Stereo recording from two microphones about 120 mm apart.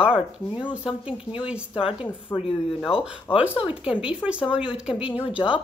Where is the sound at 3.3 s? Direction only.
45° left (ahead or behind).